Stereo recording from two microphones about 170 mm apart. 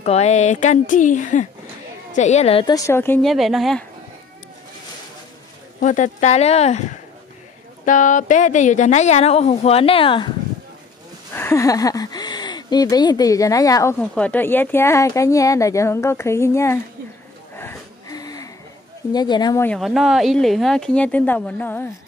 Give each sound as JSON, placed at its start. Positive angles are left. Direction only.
{"t": 0.0, "sound": "a woman's voice", "side_deg": 40}
{"t": 2.7, "sound": "speech", "side_deg": 15}
{"t": 3.2, "sound": "speech", "side_deg": 0}
{"t": 5.8, "sound": "speech", "side_deg": 45}
{"t": 7.8, "sound": "a woman's voice", "side_deg": 50}
{"t": 11.3, "sound": "speech", "side_deg": 15}
{"t": 13.9, "sound": "speech", "side_deg": 5}
{"t": 17.6, "sound": "a sound", "side_deg": 15}
{"t": 19.1, "sound": "speech", "side_deg": 25}
{"t": 19.6, "sound": "speech", "side_deg": 5}